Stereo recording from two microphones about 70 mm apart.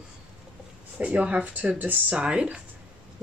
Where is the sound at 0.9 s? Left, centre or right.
Centre.